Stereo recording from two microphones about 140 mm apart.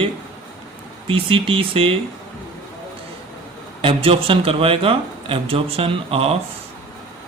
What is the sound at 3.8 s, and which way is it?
A man's voice, 40° right (ahead or behind).